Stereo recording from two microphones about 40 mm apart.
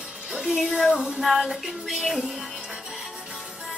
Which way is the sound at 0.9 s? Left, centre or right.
Centre.